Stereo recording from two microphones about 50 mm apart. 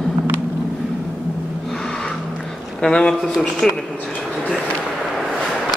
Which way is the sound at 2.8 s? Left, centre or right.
Centre.